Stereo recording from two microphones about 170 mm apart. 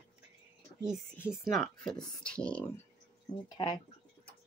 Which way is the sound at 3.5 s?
25° left (ahead or behind).